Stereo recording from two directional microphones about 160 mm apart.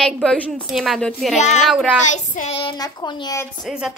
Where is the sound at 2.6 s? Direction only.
25° left (ahead or behind).